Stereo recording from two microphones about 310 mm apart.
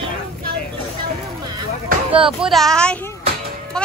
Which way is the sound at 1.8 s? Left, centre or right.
Centre.